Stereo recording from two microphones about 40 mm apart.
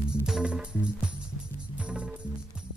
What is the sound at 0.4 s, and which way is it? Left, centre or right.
Music, right.